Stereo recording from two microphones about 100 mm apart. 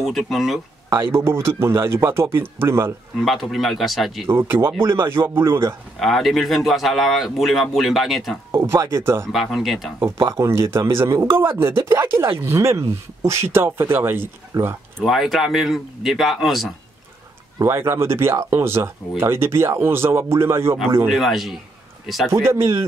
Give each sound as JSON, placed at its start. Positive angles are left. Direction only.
{"t": 0.0, "sound": "a man's voice", "side_deg": 0}
{"t": 1.1, "sound": "speech", "side_deg": -25}
{"t": 3.2, "sound": "a man's voice", "side_deg": 0}
{"t": 4.3, "sound": "speech", "side_deg": -25}
{"t": 5.9, "sound": "a man's voice", "side_deg": 5}
{"t": 8.5, "sound": "speech", "side_deg": -25}
{"t": 9.3, "sound": "a man's voice", "side_deg": 0}
{"t": 10.2, "sound": "speech", "side_deg": -30}
{"t": 15.0, "sound": "a man's voice", "side_deg": 0}
{"t": 17.6, "sound": "speech", "side_deg": -25}
{"t": 21.1, "sound": "a man's voice", "side_deg": 0}
{"t": 22.3, "sound": "speech", "side_deg": -25}